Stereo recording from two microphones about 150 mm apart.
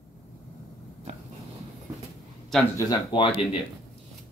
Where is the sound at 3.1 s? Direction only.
35° left (ahead or behind).